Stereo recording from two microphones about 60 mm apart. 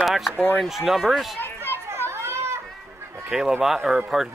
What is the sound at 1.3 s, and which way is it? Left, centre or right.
Children playing, left.